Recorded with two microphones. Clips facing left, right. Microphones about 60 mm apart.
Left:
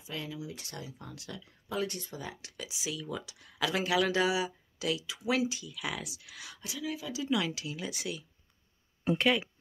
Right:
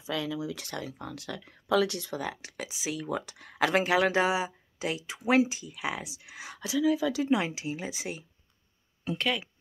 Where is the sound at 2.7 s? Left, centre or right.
Right.